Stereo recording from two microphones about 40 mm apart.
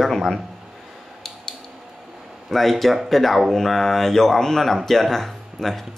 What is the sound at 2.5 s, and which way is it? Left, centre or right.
Speech, centre.